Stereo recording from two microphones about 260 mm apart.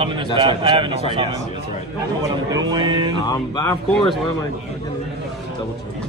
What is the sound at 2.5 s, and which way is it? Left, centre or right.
Speech, centre.